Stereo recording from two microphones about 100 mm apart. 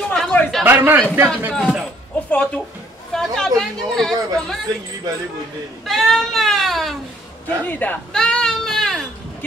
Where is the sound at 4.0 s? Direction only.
5° left (ahead or behind).